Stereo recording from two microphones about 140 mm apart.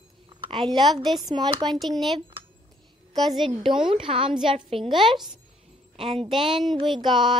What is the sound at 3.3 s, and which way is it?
A woman's voice, 35° right (ahead or behind).